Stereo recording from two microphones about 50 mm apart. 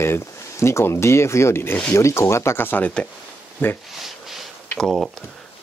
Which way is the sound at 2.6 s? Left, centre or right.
Left.